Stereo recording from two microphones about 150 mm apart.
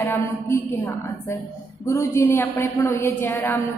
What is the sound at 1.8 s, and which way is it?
A woman's voice, 20° left (ahead or behind).